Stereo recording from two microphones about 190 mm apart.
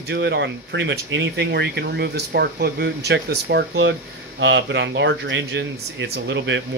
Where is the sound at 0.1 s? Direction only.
65° right (ahead or behind).